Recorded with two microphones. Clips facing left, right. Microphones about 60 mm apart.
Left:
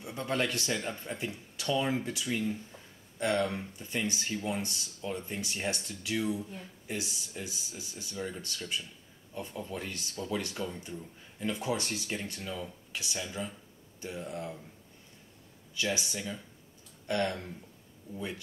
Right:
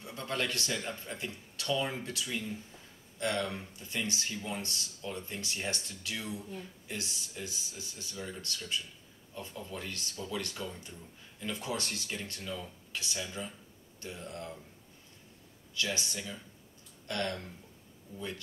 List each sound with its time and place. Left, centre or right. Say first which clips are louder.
0.0 s speech: left 3 dB; centre
15.7 s speech: left 2 dB; centre